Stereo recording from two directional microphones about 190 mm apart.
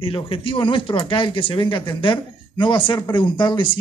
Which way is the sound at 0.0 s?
30° left (ahead or behind).